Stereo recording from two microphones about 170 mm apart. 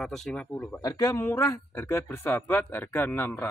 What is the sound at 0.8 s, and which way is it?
Speech, 20° left (ahead or behind).